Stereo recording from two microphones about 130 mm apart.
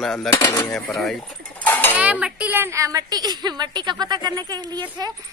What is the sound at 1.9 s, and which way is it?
A woman's voice, 10° right (ahead or behind).